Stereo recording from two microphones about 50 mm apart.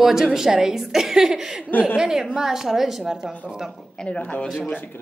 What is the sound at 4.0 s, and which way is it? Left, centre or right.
Speech, left.